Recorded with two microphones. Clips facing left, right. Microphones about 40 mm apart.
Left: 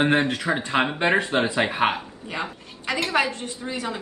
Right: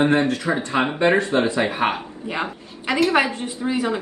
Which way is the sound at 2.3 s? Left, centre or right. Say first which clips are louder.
Right 4 dB; right.